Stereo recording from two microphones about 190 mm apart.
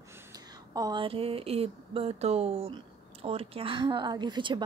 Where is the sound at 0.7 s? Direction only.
20° right (ahead or behind).